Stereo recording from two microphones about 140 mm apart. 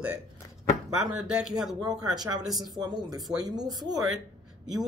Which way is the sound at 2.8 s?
30° right (ahead or behind).